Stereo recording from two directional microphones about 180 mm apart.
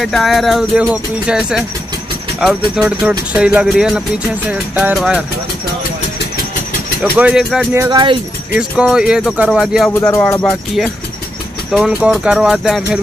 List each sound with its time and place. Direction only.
0.0 s speech: centre (ahead or behind)
7.0 s speech: 5° right (ahead or behind)
9.8 s speech: 15° left (ahead or behind)
11.7 s speech: centre (ahead or behind)